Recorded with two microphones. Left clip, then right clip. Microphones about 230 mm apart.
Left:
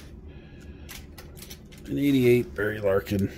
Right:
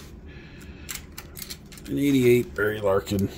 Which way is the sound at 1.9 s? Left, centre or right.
Centre.